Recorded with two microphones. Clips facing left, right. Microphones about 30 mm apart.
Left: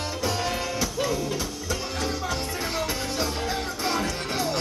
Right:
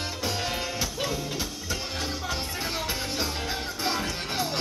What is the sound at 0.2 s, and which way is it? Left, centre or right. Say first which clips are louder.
Music: left 3 dB; centre.